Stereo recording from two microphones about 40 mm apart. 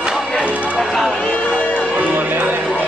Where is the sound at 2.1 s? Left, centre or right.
Right.